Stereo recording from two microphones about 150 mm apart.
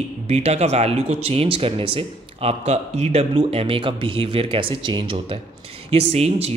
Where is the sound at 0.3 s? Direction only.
45° right (ahead or behind).